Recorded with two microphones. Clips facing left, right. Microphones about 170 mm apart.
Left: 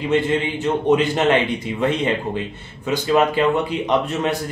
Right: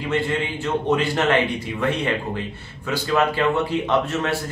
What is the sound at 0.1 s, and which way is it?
A man's voice, 20° left (ahead or behind).